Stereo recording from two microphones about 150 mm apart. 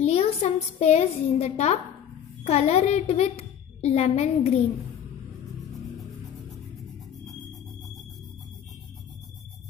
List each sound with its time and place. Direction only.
0.0 s a woman's voice: 45° left (ahead or behind)